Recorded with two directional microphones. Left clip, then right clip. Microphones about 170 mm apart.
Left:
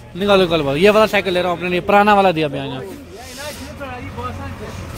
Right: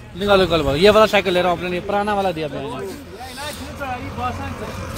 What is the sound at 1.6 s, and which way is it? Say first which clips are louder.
Speech: left 4 dB; 35° left (ahead or behind).